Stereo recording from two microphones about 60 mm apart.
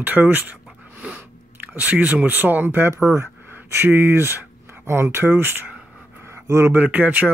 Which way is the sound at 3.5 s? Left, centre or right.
Right.